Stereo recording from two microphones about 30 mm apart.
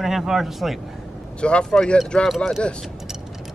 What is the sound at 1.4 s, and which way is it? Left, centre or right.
Speech, left.